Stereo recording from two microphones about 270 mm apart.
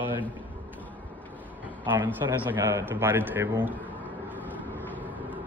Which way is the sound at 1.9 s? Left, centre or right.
Centre.